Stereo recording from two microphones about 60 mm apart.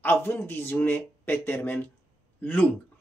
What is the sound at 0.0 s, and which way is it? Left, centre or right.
Speech, left.